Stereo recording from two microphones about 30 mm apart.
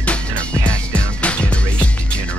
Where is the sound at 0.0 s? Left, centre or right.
Left.